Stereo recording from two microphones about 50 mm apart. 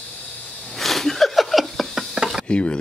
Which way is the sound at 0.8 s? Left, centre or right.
Centre.